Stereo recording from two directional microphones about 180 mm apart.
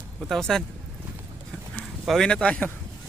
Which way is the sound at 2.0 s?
Centre (ahead or behind).